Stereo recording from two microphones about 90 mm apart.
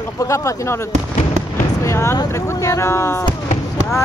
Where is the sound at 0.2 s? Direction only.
35° left (ahead or behind).